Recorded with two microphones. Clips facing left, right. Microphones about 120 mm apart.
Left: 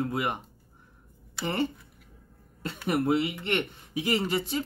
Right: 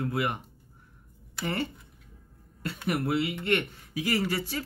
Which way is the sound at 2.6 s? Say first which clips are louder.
Left 2 dB; 25° left (ahead or behind).